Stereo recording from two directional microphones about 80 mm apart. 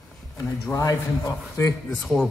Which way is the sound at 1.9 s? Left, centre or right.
Centre.